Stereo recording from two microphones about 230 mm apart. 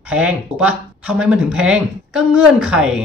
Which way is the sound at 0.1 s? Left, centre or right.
Centre.